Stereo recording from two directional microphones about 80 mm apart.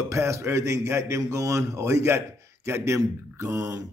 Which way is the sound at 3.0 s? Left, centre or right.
Right.